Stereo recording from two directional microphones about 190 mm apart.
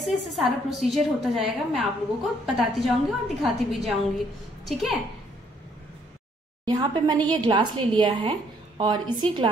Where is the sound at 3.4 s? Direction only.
Centre (ahead or behind).